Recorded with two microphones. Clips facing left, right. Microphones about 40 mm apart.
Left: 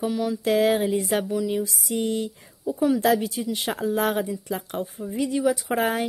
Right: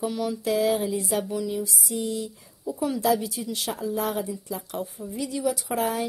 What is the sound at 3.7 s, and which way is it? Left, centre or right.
Speech, left.